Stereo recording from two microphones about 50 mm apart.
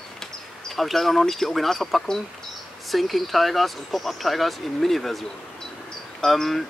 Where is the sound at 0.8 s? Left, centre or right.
Centre.